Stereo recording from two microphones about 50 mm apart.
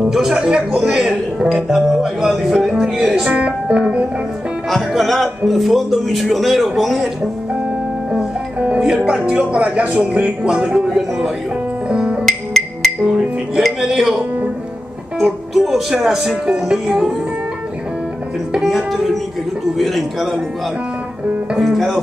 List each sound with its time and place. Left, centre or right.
0.0 s speech: centre
0.7 s speech: centre
4.6 s speech: centre
8.5 s speech: right
8.8 s speech: centre
11.9 s music: centre
12.3 s music: centre
13.6 s speech: centre
18.6 s speech: centre
21.5 s speech: centre